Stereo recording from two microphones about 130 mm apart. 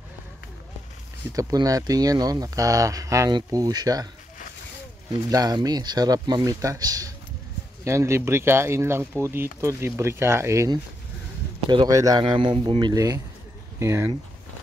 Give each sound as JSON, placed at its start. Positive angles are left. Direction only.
{"t": 1.3, "sound": "speech", "side_deg": -25}
{"t": 5.3, "sound": "speech", "side_deg": -30}